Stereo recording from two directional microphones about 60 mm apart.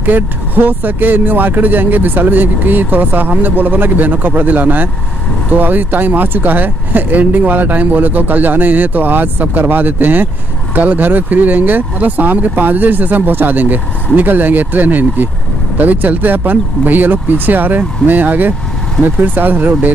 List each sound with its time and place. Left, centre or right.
0.0 s speech: right